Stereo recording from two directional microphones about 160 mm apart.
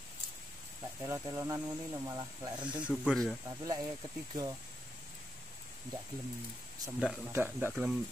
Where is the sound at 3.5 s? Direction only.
25° right (ahead or behind).